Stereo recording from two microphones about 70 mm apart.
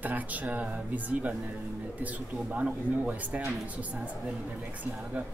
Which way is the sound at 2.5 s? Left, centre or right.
Centre.